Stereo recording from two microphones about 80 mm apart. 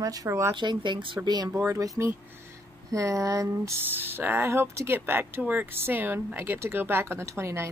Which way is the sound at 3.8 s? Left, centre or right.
Right.